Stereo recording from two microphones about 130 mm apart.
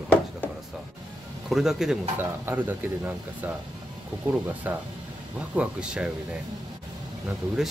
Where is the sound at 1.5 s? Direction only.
5° right (ahead or behind).